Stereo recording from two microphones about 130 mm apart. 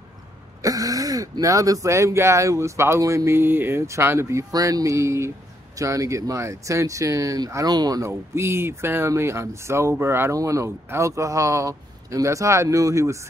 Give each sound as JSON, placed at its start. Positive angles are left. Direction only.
{"t": 0.6, "sound": "speech", "side_deg": -25}